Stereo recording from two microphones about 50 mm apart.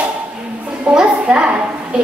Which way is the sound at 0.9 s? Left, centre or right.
Right.